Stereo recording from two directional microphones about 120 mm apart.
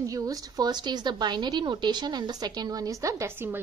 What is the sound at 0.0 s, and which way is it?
A woman's voice, 30° right (ahead or behind).